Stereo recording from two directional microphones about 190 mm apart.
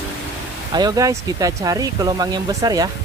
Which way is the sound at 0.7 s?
20° right (ahead or behind).